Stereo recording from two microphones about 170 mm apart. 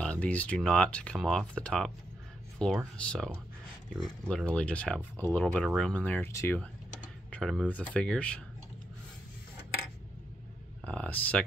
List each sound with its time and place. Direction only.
0.0 s speech: 5° left (ahead or behind)
3.0 s speech: 5° left (ahead or behind)
10.9 s speech: 5° left (ahead or behind)